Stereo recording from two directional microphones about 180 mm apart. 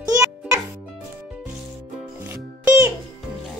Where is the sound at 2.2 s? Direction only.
15° right (ahead or behind).